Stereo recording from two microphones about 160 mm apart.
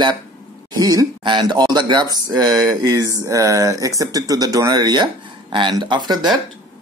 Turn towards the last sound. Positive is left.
turn(degrees=-30)  # may be behind; listen again after turning